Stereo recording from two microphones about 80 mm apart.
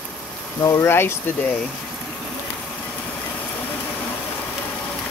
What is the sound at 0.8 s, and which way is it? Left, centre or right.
Speech, left.